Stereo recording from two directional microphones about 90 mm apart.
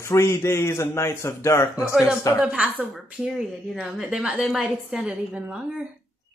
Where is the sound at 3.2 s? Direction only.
Centre (ahead or behind).